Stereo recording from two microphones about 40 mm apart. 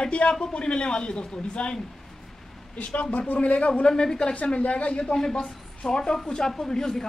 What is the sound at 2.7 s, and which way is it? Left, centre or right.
Speech, left.